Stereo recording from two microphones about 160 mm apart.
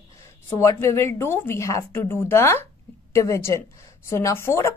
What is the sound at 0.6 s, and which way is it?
A woman's voice, 15° left (ahead or behind).